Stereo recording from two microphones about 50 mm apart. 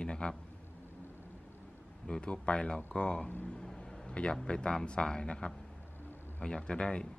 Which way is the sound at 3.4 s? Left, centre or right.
Centre.